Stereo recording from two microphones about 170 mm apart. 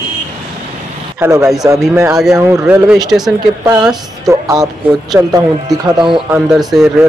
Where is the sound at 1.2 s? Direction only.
15° right (ahead or behind).